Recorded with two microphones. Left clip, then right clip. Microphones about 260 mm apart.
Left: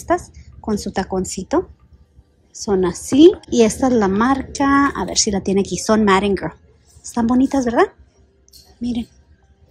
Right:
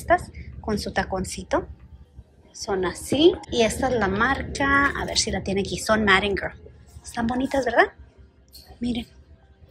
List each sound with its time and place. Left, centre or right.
0.3 s speech: left